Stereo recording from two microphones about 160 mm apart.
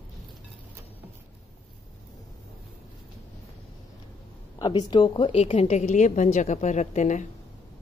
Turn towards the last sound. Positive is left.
turn(degrees=50)  # may be behind; listen again after turning